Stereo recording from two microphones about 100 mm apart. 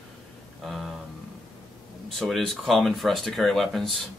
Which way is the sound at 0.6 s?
Centre (ahead or behind).